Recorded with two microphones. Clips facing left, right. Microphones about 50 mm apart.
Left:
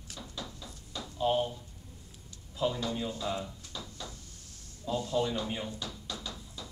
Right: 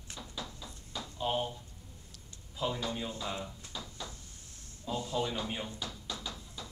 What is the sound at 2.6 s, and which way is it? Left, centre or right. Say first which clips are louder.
Speech: left 3 dB; centre.